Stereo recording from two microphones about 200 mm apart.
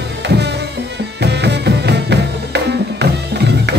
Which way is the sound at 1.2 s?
55° right (ahead or behind).